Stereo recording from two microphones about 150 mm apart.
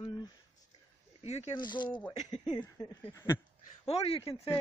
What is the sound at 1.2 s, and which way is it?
Speech, 45° left (ahead or behind).